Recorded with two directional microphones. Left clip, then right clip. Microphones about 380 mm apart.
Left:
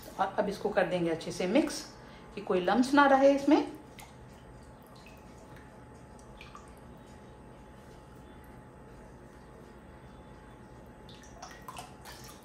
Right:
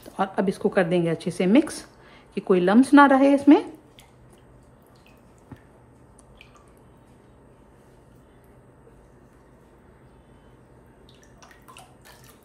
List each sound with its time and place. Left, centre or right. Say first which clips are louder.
0.2 s speech: right 6 dB; centre